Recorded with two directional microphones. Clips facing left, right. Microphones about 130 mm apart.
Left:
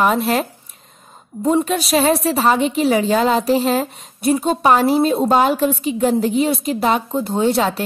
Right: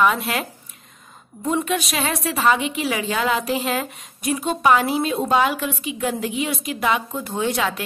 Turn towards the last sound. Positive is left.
turn(degrees=35)  # may be behind; listen again after turning